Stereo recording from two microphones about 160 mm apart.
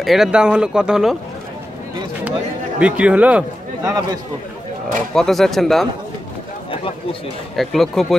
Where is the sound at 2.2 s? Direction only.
10° right (ahead or behind).